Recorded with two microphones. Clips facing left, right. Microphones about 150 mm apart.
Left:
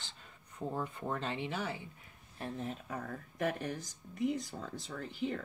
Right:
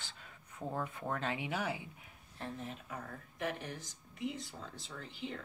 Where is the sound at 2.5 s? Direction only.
40° left (ahead or behind).